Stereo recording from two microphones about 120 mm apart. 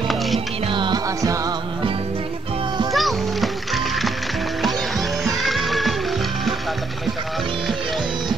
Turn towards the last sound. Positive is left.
turn(degrees=0)  # may be behind; listen again after turning